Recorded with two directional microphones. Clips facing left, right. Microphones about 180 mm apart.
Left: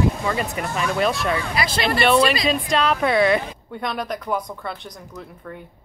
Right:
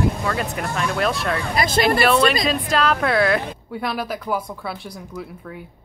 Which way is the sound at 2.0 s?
Centre (ahead or behind).